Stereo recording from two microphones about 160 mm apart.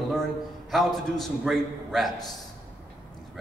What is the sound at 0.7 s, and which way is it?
A man's voice, centre (ahead or behind).